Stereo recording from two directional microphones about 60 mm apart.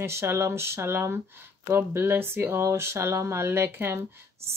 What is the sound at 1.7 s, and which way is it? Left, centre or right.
Female singing, right.